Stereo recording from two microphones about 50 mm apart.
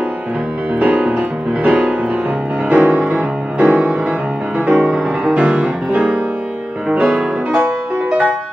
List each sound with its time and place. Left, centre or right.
0.7 s music: right
5.4 s music: centre
5.9 s music: right